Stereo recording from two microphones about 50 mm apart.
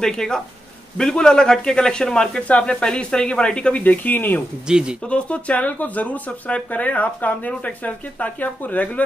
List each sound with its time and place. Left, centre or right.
0.0 s speech: centre
3.8 s speech: left
4.6 s speech: centre
5.0 s speech: left